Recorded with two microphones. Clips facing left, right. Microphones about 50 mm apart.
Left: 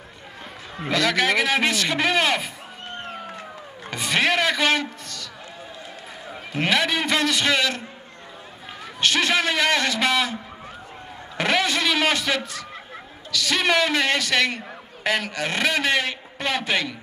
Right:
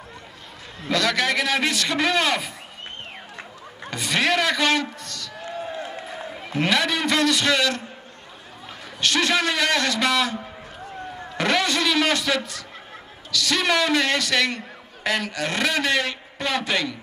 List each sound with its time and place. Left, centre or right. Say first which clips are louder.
0.9 s a man's voice: left 1 dB; centre
3.9 s a man's voice: left 1 dB; centre
5.7 s a sound: right 7 dB; right
6.5 s a man's voice: even; centre
9.0 s a man's voice: even; centre
11.3 s a man's voice: even; centre